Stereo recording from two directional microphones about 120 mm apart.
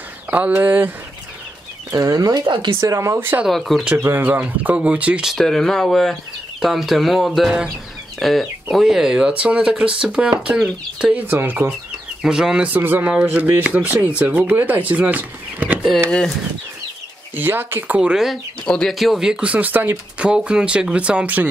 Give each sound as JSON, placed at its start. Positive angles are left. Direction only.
{"t": 0.3, "sound": "speech", "side_deg": -15}
{"t": 1.9, "sound": "speech", "side_deg": -25}
{"t": 2.8, "sound": "speech", "side_deg": -25}
{"t": 3.4, "sound": "speech", "side_deg": 0}
{"t": 4.0, "sound": "speech", "side_deg": -15}
{"t": 12.2, "sound": "speech", "side_deg": -5}
{"t": 17.4, "sound": "speech", "side_deg": -15}